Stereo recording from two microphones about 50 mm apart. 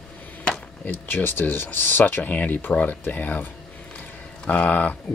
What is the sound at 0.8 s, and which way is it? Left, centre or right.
Speech, left.